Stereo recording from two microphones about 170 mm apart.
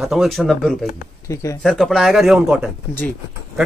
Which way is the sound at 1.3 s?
15° left (ahead or behind).